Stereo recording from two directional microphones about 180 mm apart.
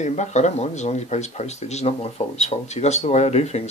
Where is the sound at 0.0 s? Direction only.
40° left (ahead or behind).